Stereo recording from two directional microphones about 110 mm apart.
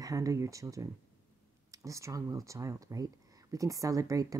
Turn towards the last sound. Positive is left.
turn(degrees=-30)  # may be behind; listen again after turning